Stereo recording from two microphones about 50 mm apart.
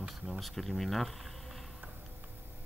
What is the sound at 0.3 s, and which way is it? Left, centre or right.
Speech, centre.